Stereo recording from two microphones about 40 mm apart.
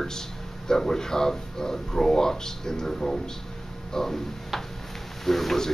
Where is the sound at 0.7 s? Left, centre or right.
Centre.